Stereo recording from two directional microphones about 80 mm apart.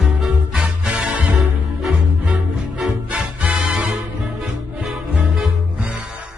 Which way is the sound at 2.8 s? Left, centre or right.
Centre.